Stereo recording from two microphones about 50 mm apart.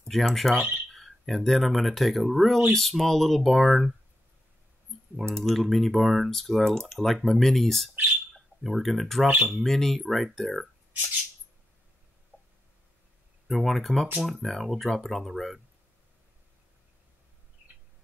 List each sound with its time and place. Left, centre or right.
0.1 s speech: centre
5.3 s speech: centre
12.3 s a sound: right
13.5 s speech: centre
14.1 s speech: centre
14.4 s speech: centre